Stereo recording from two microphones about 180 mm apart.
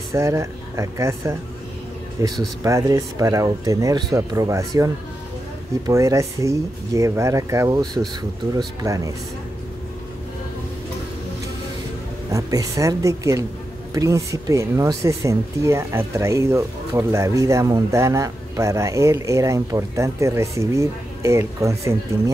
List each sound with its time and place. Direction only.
0.1 s speech: 15° right (ahead or behind)
12.3 s speech: 20° right (ahead or behind)